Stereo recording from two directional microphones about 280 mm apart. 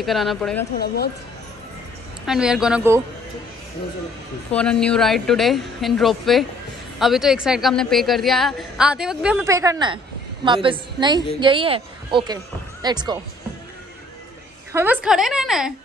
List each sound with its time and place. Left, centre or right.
0.0 s a woman's voice: centre
0.7 s speech: left
2.2 s a woman's voice: centre
4.5 s a woman's voice: centre
14.7 s a woman's voice: centre